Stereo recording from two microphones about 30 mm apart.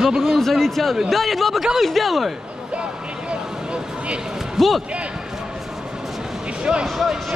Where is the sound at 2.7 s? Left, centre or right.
Right.